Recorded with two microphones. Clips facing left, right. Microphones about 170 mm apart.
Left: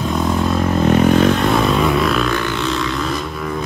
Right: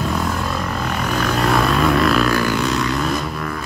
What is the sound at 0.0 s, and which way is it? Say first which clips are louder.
Vehicle: left 4 dB; centre (ahead or behind).